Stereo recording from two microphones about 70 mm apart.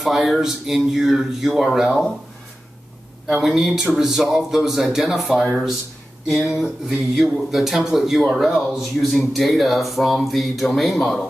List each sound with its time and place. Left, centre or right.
0.0 s speech: centre
3.3 s speech: centre